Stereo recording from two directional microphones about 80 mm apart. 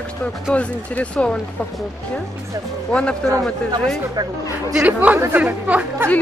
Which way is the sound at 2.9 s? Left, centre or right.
Centre.